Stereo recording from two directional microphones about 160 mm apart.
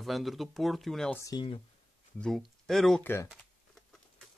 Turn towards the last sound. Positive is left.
turn(degrees=15)  # may be behind; listen again after turning